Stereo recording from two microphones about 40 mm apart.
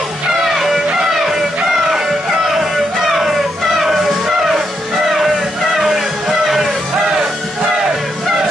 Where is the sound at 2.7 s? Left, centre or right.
Centre.